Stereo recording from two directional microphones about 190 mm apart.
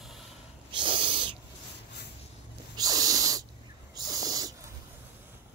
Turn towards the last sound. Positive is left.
turn(degrees=-20)  # may be behind; listen again after turning